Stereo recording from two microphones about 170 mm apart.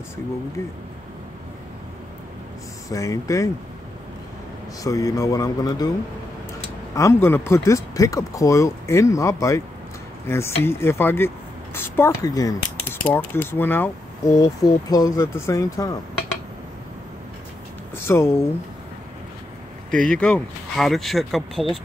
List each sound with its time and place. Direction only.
2.9 s speech: 20° left (ahead or behind)
4.8 s speech: 20° left (ahead or behind)
7.0 s speech: 15° left (ahead or behind)
17.9 s speech: 15° left (ahead or behind)
19.9 s speech: 5° left (ahead or behind)